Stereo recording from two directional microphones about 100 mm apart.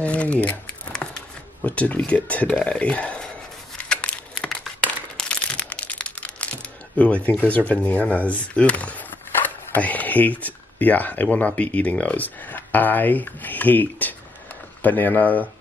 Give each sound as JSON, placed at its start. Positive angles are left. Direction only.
{"t": 0.0, "sound": "speech", "side_deg": 10}
{"t": 3.7, "sound": "crumpling", "side_deg": 10}
{"t": 7.2, "sound": "speech", "side_deg": 15}